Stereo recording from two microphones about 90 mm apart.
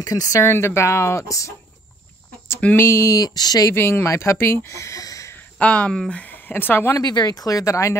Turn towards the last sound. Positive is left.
turn(degrees=35)  # may be behind; listen again after turning